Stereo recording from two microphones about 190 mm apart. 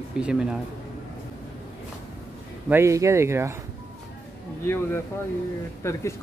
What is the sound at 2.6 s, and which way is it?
Speech, 15° right (ahead or behind).